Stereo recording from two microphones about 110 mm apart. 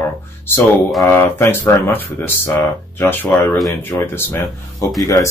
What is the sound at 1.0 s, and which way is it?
Speech, 20° left (ahead or behind).